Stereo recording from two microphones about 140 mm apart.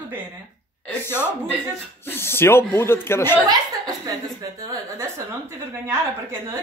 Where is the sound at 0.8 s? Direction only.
15° left (ahead or behind).